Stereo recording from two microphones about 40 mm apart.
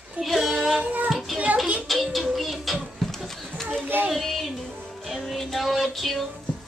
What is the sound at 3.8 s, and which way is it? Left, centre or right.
Child singing, right.